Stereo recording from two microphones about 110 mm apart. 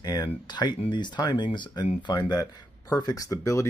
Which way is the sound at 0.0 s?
35° left (ahead or behind).